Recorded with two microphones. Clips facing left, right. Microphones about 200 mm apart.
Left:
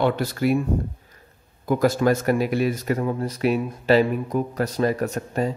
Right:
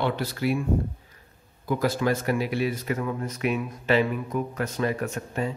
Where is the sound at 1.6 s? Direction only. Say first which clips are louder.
Left 5 dB; 45° left (ahead or behind).